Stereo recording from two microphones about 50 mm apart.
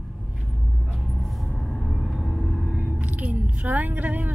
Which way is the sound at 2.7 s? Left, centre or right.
Right.